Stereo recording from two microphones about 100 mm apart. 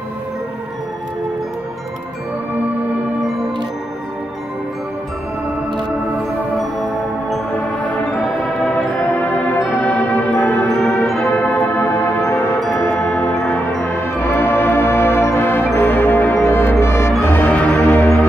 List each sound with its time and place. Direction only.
9.5 s music: 15° left (ahead or behind)
11.1 s music: 10° left (ahead or behind); by 12.5 s 30° left (ahead or behind)
13.0 s music: 5° left (ahead or behind)
14.2 s music: 20° left (ahead or behind)